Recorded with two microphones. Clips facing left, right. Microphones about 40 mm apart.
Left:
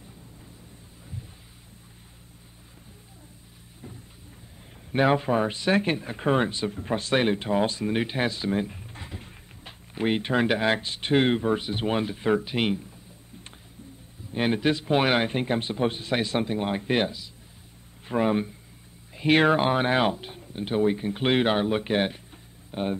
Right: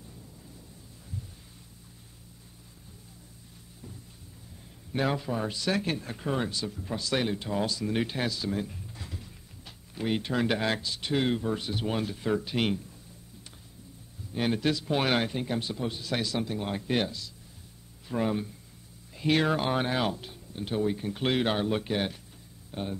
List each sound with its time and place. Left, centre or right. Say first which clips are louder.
4.9 s speech: left 7 dB; left
6.1 s speech: left 7 dB; left
7.9 s a sound: left 4 dB; left
10.5 s speech: left 5 dB; left
10.8 s speech: left 6 dB; left
14.3 s speech: left 4 dB; left
15.3 s speech: left 5 dB; left